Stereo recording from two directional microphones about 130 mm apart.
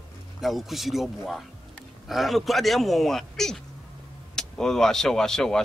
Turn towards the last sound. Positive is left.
turn(degrees=5)  # may be behind; listen again after turning